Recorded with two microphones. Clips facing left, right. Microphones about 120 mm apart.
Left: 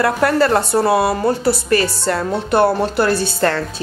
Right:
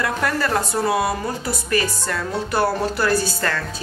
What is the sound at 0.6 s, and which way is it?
Speech, 70° left (ahead or behind).